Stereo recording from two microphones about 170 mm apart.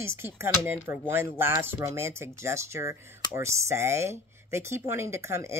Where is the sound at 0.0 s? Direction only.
15° right (ahead or behind).